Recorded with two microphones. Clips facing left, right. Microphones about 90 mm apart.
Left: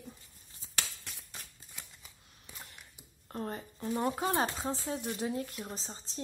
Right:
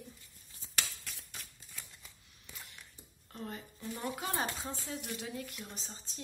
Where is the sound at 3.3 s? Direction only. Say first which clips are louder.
Left 5 dB; 40° left (ahead or behind).